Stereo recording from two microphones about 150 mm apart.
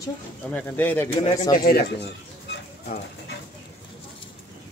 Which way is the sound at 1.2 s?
50° left (ahead or behind).